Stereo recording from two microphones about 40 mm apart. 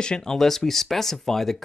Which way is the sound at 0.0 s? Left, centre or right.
Centre.